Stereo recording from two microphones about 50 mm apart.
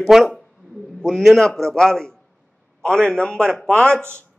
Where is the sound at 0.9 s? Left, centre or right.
Centre.